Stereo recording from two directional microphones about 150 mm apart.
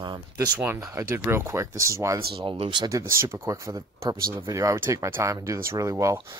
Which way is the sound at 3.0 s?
15° right (ahead or behind).